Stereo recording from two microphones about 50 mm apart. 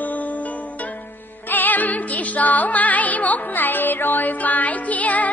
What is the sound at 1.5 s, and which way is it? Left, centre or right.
Music, left.